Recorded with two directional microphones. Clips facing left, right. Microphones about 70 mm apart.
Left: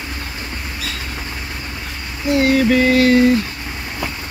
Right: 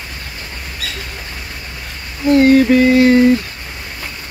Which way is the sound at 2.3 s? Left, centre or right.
Right.